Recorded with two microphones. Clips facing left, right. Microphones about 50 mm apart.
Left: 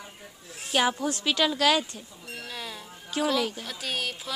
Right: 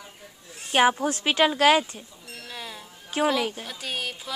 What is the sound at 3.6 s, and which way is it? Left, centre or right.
Speech, centre.